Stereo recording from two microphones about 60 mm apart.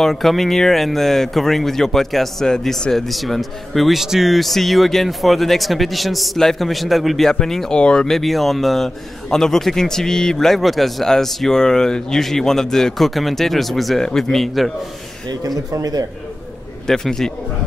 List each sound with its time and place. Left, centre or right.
0.0 s speech: centre
15.2 s speech: right
16.8 s a man's voice: centre